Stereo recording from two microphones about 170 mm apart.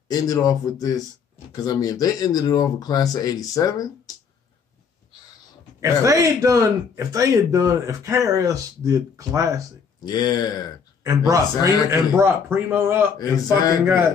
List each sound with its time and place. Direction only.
0.1 s speech: 20° left (ahead or behind)
5.8 s speech: 20° right (ahead or behind)
9.9 s speech: 25° left (ahead or behind)
11.1 s speech: 20° right (ahead or behind)
13.2 s speech: 20° left (ahead or behind)